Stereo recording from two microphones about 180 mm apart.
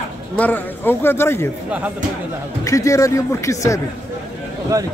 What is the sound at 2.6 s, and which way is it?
Speech, 15° left (ahead or behind).